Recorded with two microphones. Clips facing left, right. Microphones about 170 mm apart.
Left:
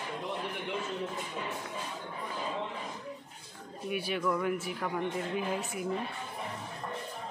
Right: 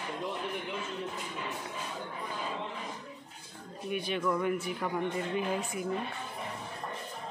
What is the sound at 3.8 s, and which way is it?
Speech, 5° left (ahead or behind).